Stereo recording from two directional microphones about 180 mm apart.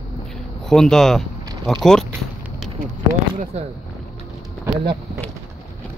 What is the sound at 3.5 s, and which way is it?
Speech, 35° right (ahead or behind).